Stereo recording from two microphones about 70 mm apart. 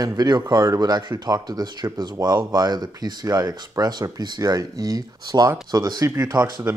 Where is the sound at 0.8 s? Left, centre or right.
Right.